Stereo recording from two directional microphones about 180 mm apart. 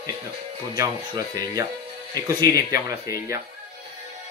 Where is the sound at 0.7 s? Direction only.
20° right (ahead or behind).